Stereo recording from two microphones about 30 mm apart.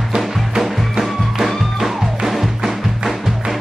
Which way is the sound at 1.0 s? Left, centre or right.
Centre.